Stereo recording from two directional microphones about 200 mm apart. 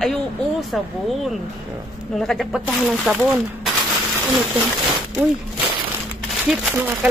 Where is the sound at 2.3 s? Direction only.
Centre (ahead or behind).